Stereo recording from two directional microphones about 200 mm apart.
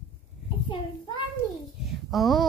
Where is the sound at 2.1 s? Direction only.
Centre (ahead or behind).